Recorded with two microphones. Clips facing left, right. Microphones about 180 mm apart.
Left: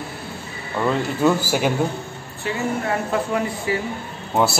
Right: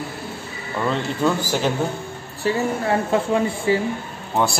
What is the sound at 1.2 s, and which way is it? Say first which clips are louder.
Speech: left 2 dB; 10° left (ahead or behind).